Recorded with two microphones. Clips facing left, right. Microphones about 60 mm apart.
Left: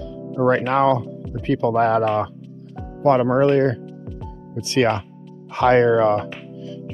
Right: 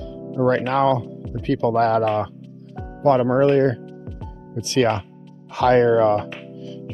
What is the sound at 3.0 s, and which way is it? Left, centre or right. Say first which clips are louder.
Speech: even; left.